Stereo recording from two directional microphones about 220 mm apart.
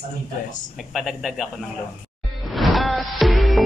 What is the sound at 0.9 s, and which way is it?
Speech, centre (ahead or behind).